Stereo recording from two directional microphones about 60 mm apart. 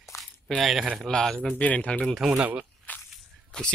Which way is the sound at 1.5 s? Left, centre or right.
Left.